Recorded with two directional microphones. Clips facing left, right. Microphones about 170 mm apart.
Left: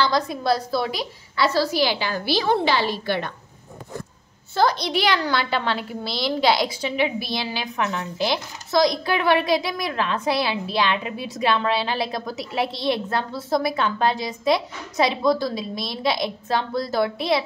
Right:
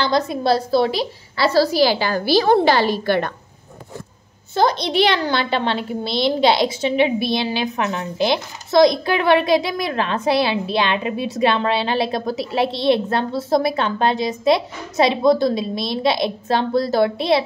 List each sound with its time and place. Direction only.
0.0 s a woman's voice: 25° right (ahead or behind); by 3.3 s 50° right (ahead or behind)
4.6 s a woman's voice: 20° right (ahead or behind)